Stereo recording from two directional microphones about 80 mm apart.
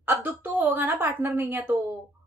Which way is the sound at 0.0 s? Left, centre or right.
Right.